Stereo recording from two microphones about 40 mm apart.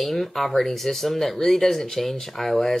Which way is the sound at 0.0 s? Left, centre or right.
Centre.